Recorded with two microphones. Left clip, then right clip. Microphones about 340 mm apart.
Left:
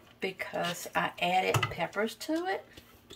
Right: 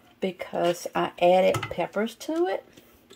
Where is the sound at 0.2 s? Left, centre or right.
Right.